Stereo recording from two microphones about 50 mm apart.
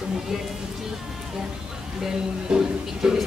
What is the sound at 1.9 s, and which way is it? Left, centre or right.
A woman's voice, centre.